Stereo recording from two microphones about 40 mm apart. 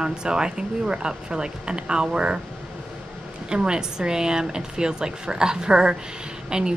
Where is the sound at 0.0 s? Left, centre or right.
Right.